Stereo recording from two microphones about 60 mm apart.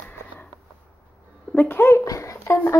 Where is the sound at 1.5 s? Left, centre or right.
Left.